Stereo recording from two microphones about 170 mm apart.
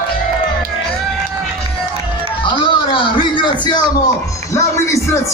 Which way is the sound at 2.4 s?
30° left (ahead or behind).